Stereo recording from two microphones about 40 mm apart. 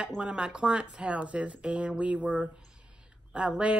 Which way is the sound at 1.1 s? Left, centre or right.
Right.